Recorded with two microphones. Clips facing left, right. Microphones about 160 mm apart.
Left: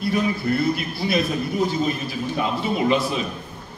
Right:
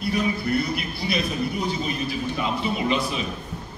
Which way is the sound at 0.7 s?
45° left (ahead or behind).